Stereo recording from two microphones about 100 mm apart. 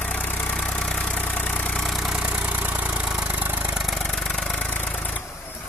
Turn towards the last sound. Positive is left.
turn(degrees=15)  # may be behind; listen again after turning